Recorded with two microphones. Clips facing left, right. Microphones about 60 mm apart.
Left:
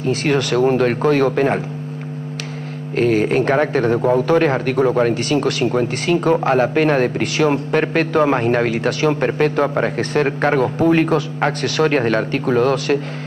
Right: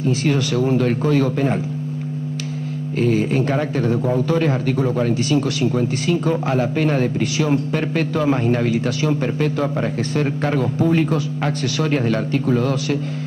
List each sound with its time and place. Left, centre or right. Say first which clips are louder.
0.0 s a man's voice: left 2 dB; left
3.0 s a man's voice: left 3 dB; left